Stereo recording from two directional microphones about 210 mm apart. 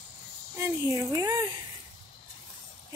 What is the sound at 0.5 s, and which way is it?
Speech, 10° right (ahead or behind).